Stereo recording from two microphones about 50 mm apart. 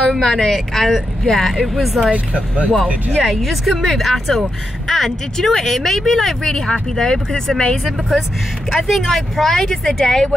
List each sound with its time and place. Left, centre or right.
0.2 s speech: centre
2.0 s speech: right
3.2 s speech: centre
8.7 s speech: centre